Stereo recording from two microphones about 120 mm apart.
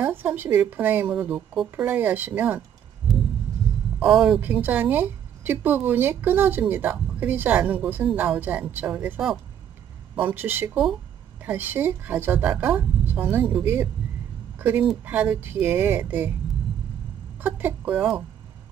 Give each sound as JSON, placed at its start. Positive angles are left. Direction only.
{"t": 0.0, "sound": "a woman's voice", "side_deg": -15}
{"t": 1.9, "sound": "a woman's voice", "side_deg": -15}
{"t": 4.1, "sound": "a woman's voice", "side_deg": -5}
{"t": 17.4, "sound": "a woman's voice", "side_deg": -15}